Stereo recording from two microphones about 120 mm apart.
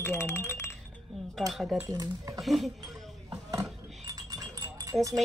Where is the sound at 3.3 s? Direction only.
30° right (ahead or behind).